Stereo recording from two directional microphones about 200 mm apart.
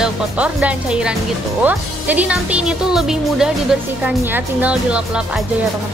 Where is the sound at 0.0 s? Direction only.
5° right (ahead or behind).